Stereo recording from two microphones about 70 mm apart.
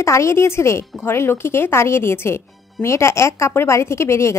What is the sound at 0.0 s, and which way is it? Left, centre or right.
Speech, left.